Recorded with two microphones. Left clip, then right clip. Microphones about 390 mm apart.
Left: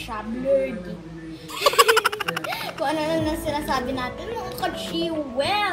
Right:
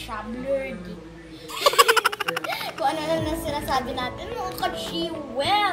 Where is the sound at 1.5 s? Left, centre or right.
Centre.